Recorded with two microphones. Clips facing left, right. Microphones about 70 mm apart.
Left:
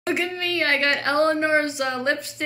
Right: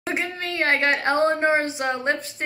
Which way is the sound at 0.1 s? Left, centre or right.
Right.